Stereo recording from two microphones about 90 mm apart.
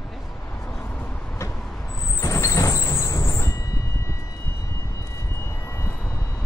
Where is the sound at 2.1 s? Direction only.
35° left (ahead or behind).